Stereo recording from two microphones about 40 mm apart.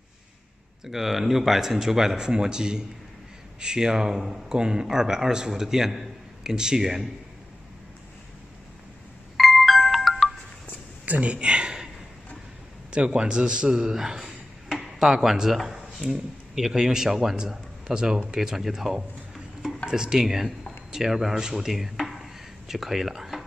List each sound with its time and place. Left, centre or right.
0.8 s speech: centre
4.6 s a man's voice: centre
9.4 s music: centre
11.1 s speech: right
11.3 s speech: right
12.9 s speech: right
18.7 s a sound: centre
19.9 s speech: centre